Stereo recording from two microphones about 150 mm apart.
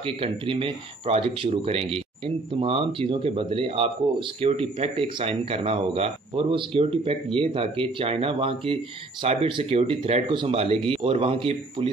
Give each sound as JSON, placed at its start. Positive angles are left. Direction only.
{"t": 0.0, "sound": "speech", "side_deg": -35}